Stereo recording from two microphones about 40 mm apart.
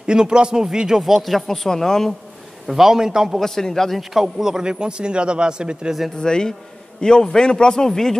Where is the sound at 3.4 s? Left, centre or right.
Centre.